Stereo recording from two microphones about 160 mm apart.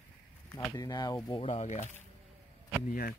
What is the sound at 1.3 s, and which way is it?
Speech, 40° left (ahead or behind).